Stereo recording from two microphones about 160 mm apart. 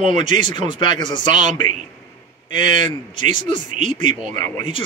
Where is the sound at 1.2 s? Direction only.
50° right (ahead or behind).